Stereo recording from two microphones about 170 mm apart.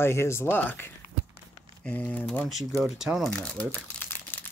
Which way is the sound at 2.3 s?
Centre (ahead or behind).